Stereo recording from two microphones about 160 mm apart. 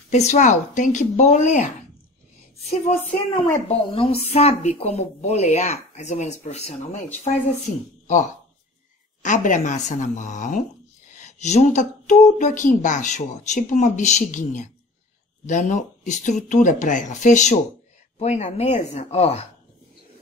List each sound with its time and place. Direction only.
0.1 s speech: 45° left (ahead or behind)
3.6 s a woman's voice: 35° left (ahead or behind)